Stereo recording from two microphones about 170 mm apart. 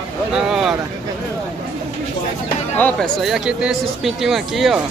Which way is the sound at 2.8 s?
Centre (ahead or behind).